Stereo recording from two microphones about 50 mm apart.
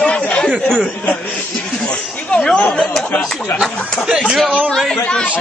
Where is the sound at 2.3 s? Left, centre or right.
Left.